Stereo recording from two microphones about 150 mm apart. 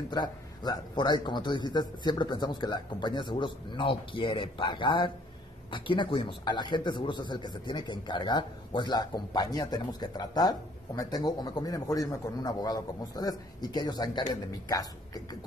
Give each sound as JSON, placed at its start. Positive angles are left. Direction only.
{"t": 0.1, "sound": "a man's voice", "side_deg": 30}